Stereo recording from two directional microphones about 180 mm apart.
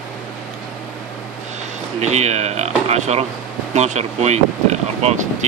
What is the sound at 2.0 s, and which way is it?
Speech, 40° right (ahead or behind).